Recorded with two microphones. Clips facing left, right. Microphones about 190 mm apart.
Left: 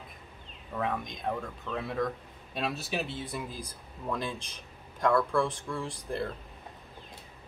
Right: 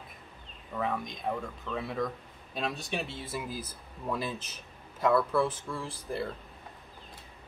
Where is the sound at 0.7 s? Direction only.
Centre (ahead or behind).